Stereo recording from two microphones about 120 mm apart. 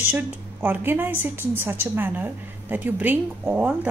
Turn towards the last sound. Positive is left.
turn(degrees=-10)  # may be behind; listen again after turning